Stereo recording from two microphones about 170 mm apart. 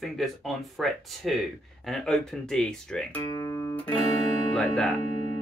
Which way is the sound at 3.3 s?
25° left (ahead or behind).